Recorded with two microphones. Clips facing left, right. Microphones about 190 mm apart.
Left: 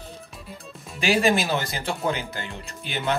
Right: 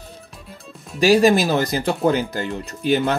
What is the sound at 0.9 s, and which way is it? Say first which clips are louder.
Speech: right 7 dB; 40° right (ahead or behind).